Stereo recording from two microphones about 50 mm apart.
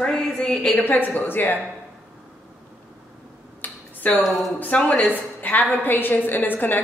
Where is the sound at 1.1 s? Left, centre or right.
Left.